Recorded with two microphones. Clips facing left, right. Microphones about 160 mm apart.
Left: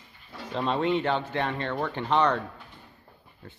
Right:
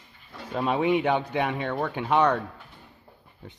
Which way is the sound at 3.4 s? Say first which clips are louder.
Right 2 dB; 15° right (ahead or behind).